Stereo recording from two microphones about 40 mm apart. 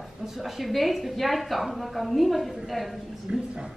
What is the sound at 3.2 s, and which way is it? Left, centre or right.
Speech, centre.